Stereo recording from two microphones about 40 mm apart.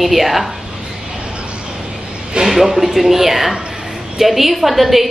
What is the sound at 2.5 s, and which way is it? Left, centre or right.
A woman's voice, centre.